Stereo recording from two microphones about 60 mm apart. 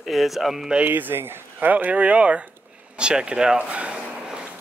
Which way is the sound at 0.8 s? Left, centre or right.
Right.